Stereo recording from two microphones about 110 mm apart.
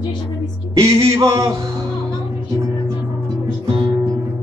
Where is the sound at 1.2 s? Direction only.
35° right (ahead or behind).